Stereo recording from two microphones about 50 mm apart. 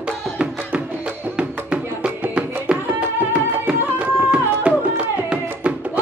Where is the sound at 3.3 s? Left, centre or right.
Right.